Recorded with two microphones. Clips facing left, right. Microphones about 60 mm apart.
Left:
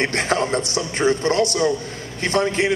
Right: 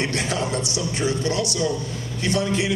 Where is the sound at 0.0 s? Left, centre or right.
Left.